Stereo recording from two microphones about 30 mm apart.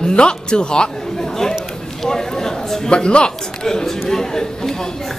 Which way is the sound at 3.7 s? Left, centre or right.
Centre.